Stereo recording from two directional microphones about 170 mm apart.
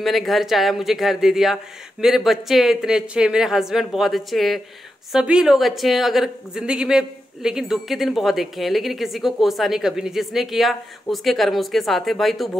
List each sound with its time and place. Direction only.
0.0 s a woman's voice: centre (ahead or behind)